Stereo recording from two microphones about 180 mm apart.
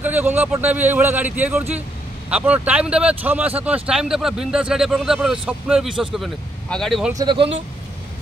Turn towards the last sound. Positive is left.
turn(degrees=-30)  # may be behind; listen again after turning